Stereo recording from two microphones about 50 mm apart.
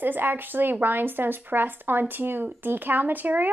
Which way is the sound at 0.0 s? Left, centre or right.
Right.